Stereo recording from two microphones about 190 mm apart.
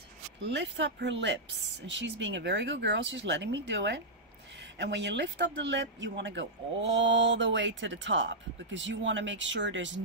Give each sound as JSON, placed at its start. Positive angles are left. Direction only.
{"t": 0.5, "sound": "speech", "side_deg": -70}